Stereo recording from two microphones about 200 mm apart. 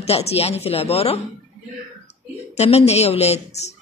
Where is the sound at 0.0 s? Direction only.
30° left (ahead or behind).